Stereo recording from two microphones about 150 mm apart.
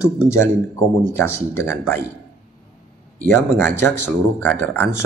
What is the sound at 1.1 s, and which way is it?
Speech, 15° left (ahead or behind).